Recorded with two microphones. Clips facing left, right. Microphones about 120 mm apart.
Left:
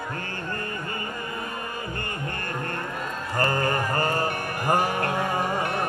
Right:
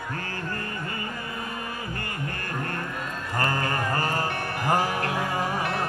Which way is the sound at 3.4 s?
30° left (ahead or behind).